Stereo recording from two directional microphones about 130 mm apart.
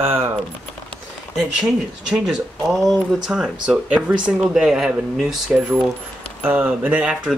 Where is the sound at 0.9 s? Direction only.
Centre (ahead or behind).